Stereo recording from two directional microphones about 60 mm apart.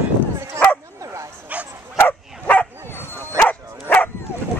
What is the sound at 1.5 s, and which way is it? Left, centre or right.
Dog, right.